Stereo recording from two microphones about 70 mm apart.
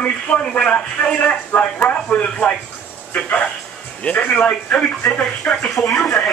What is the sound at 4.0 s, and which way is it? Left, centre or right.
Speech, centre.